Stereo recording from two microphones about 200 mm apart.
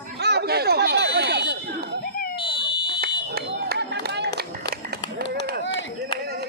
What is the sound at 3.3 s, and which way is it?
Run, 55° right (ahead or behind).